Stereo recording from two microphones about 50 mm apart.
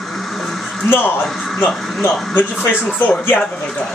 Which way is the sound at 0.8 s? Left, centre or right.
Left.